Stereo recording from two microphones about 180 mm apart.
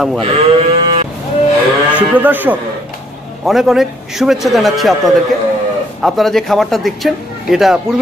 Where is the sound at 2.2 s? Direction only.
10° right (ahead or behind).